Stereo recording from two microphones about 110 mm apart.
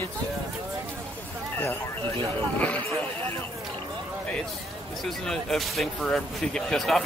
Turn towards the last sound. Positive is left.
turn(degrees=0)  # may be behind; listen again after turning